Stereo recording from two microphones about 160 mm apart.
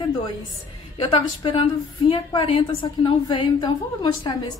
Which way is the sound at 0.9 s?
30° left (ahead or behind).